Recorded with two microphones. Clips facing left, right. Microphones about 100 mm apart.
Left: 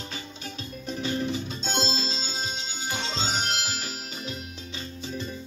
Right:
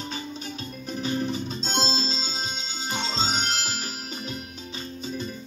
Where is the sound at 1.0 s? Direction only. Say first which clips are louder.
Right 1 dB; 35° right (ahead or behind).